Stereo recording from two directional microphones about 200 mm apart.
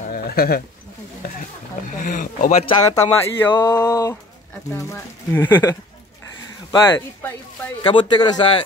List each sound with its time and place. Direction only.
0.1 s sheep: 50° left (ahead or behind)
2.0 s speech: 40° left (ahead or behind)
2.9 s speech: 20° left (ahead or behind)
7.8 s a man's voice: 25° left (ahead or behind)